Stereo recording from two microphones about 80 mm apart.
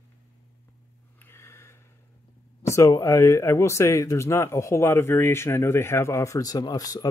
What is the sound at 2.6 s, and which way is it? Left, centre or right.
Speech, left.